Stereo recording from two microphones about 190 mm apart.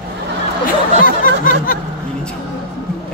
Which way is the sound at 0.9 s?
45° left (ahead or behind).